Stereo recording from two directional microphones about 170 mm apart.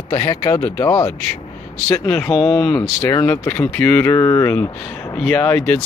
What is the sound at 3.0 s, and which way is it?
Speech, 15° left (ahead or behind).